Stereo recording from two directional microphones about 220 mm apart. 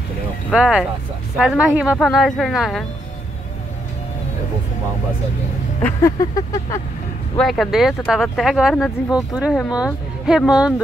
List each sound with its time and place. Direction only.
0.5 s speech: 5° right (ahead or behind)
5.8 s a sound: 10° left (ahead or behind)
7.3 s speech: centre (ahead or behind)